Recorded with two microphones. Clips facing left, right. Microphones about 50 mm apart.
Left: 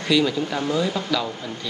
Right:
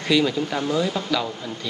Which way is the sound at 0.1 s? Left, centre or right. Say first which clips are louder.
Even; centre.